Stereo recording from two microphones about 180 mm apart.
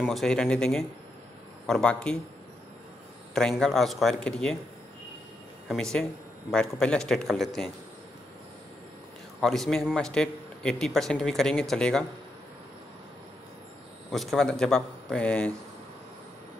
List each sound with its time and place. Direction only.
0.0 s a man's voice: centre (ahead or behind)
3.3 s a man's voice: 5° left (ahead or behind)
5.7 s a man's voice: 5° left (ahead or behind)
9.4 s a man's voice: centre (ahead or behind)
14.1 s a man's voice: centre (ahead or behind)